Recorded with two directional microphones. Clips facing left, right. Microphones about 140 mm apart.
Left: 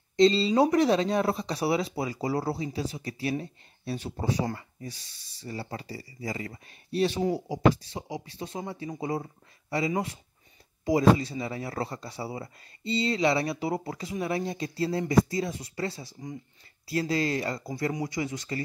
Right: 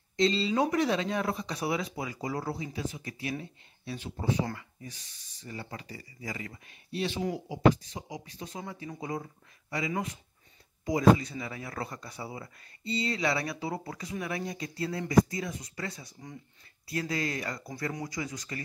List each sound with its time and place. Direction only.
0.2 s speech: 35° left (ahead or behind)